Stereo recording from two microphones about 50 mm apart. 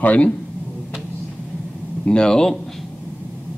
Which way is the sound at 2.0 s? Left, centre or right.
Centre.